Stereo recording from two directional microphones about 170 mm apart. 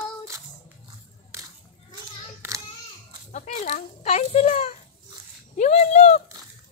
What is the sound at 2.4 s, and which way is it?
Child singing, 15° right (ahead or behind).